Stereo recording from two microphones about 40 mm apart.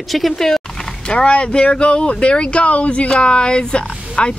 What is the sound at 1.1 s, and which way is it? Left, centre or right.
Speech, left.